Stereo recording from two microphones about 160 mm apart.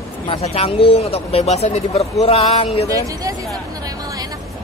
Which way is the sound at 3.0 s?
20° right (ahead or behind).